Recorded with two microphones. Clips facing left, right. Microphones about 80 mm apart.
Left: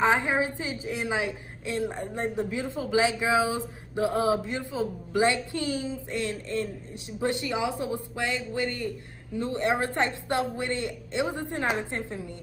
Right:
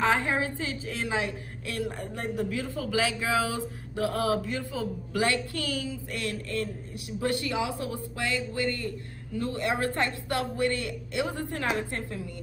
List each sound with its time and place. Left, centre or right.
0.0 s a woman's voice: left